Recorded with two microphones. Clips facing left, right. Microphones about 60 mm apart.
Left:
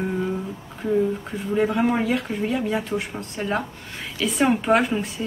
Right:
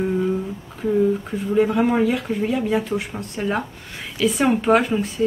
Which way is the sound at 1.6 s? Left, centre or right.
Centre.